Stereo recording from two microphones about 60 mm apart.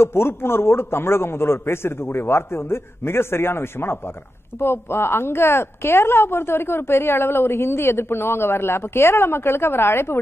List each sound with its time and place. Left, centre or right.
0.0 s a woman's voice: left